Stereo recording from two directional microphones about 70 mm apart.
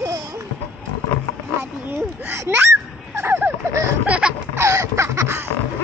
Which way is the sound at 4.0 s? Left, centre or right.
Centre.